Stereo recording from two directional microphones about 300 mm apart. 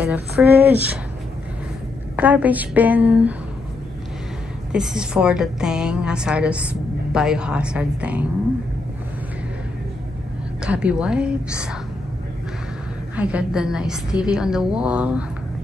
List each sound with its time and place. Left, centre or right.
0.0 s a woman's voice: centre
2.1 s a woman's voice: centre
4.7 s a woman's voice: centre
10.6 s a woman's voice: centre
13.1 s a woman's voice: centre